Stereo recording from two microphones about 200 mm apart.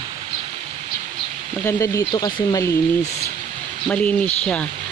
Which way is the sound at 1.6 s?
15° left (ahead or behind).